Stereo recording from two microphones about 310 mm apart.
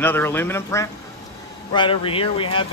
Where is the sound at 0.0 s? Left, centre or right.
Centre.